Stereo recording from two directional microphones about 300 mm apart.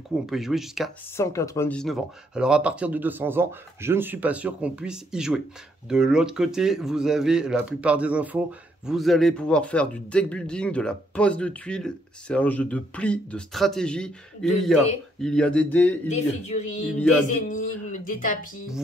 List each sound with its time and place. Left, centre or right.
0.1 s speech: centre
16.1 s speech: left